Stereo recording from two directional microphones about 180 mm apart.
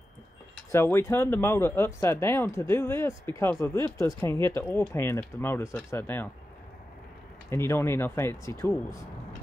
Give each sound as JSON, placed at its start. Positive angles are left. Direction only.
{"t": 0.7, "sound": "speech", "side_deg": 15}
{"t": 7.4, "sound": "speech", "side_deg": 15}